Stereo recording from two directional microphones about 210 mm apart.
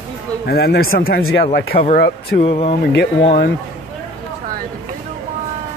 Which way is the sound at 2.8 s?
50° left (ahead or behind).